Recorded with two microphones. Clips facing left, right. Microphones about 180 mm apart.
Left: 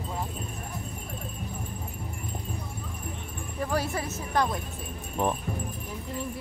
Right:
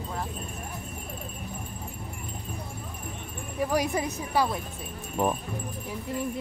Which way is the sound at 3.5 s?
10° right (ahead or behind).